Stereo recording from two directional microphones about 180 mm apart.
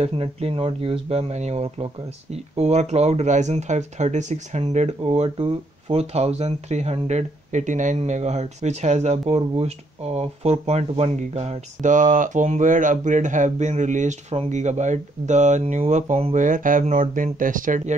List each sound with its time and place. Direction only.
0.0 s speech: 35° right (ahead or behind)